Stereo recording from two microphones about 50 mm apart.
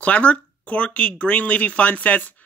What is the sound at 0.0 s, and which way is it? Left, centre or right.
A woman's voice, left.